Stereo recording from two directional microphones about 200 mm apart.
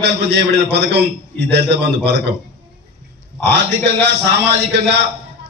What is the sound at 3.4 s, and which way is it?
A man's voice, 55° right (ahead or behind).